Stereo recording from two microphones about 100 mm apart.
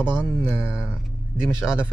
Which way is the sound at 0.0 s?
20° left (ahead or behind).